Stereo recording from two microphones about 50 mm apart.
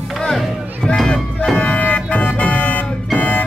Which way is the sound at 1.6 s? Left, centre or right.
Left.